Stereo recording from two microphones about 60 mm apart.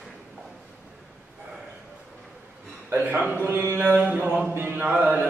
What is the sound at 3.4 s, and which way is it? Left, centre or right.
Mantra, right.